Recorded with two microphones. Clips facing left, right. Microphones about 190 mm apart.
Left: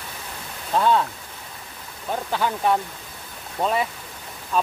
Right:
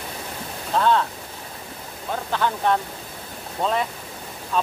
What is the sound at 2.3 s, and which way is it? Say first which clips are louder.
Speech: even; 10° left (ahead or behind).